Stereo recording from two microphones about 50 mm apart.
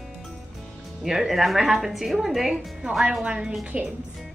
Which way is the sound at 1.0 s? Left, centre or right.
Centre.